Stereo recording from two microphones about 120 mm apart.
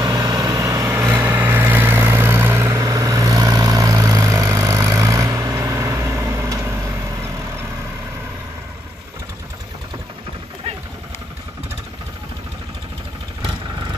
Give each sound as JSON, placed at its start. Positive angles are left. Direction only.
{"t": 0.3, "sound": "vehicle", "side_deg": -30}